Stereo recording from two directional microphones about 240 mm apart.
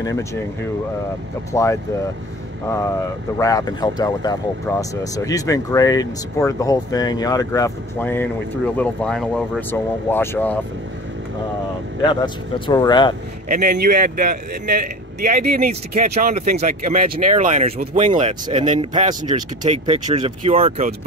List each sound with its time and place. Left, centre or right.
0.0 s speech: centre
1.5 s speech: centre
3.3 s speech: centre
12.0 s speech: centre
13.5 s a man's voice: right; by 19.4 s centre
19.6 s speech: right